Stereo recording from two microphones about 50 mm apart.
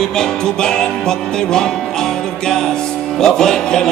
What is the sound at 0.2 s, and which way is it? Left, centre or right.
Music, centre.